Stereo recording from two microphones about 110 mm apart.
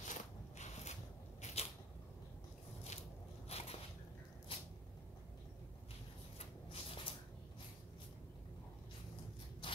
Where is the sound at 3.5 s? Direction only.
65° left (ahead or behind).